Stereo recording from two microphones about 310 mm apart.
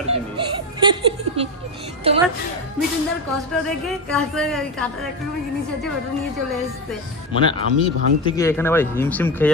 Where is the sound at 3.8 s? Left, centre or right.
Centre.